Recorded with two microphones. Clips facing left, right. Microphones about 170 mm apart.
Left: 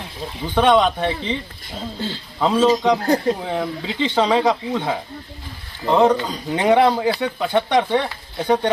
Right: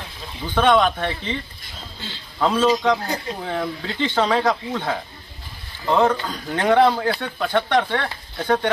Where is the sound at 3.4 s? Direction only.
5° left (ahead or behind).